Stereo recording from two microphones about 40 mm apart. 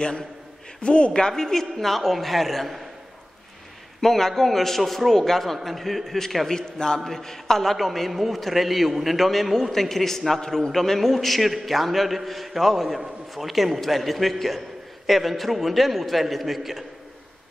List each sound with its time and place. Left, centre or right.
0.8 s a man's voice: left; by 2.8 s centre
4.0 s a man's voice: centre